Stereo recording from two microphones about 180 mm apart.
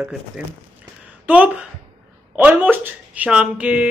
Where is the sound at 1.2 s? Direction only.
10° right (ahead or behind).